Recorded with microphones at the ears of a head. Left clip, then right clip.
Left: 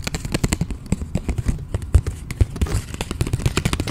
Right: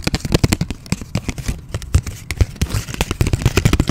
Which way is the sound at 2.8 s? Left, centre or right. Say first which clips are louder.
Right 6 dB; right.